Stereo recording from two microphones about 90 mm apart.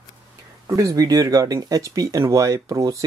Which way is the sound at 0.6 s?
40° right (ahead or behind).